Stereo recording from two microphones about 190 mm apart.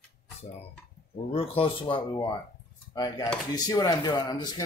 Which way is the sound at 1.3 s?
30° left (ahead or behind).